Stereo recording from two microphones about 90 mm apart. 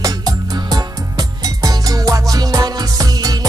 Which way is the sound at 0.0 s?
45° right (ahead or behind).